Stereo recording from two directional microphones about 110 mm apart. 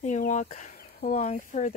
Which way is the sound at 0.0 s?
90° left.